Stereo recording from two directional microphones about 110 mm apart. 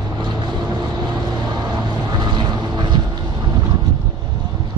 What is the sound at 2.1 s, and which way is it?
Vehicle, 40° right (ahead or behind).